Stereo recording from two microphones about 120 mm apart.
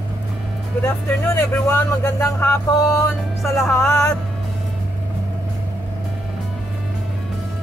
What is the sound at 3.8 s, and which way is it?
Speech, 20° left (ahead or behind).